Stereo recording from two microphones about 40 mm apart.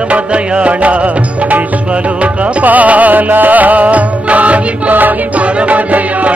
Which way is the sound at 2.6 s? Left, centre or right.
Right.